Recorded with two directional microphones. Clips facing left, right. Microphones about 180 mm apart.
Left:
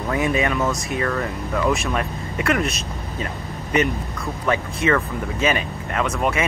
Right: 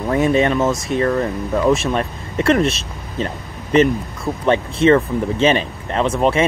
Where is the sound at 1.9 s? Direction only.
30° right (ahead or behind).